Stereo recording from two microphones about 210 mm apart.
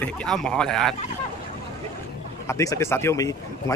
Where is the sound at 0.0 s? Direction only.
5° left (ahead or behind).